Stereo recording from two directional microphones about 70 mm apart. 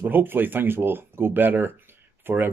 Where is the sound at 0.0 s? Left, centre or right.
Right.